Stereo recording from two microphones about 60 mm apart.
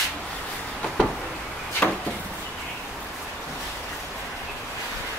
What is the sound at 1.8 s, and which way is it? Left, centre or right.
Chop, left.